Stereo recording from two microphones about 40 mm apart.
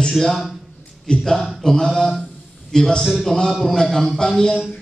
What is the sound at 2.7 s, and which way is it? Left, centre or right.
A man's voice, centre.